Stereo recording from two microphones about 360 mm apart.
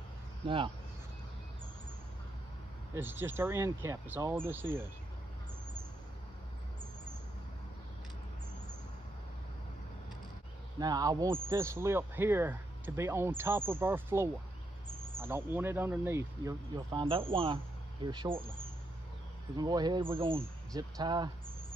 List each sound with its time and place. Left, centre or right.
0.4 s speech: centre
2.9 s speech: centre
10.8 s speech: centre
19.5 s speech: centre